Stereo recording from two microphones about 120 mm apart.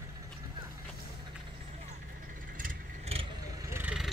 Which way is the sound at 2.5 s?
60° right (ahead or behind).